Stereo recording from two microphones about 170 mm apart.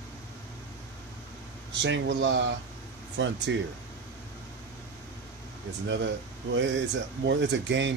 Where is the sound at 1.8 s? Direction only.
90° right.